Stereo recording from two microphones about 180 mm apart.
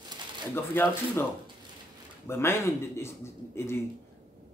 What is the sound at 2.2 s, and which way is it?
Speech, 15° left (ahead or behind).